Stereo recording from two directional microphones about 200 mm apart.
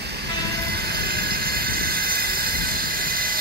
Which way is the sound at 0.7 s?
50° right (ahead or behind).